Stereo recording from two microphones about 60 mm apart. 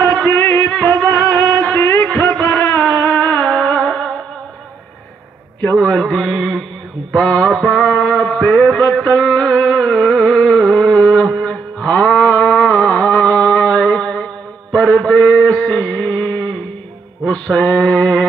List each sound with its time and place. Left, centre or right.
0.0 s music: left
2.0 s a sound: left
3.0 s music: left
5.8 s mantra: centre
7.2 s music: centre
7.5 s mantra: centre
8.1 s a sound: centre
8.5 s music: centre
11.0 s mantra: centre
11.9 s a sound: left
14.7 s mantra: left